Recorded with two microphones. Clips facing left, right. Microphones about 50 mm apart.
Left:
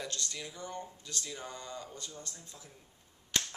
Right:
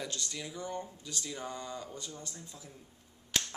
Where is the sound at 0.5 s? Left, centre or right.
Centre.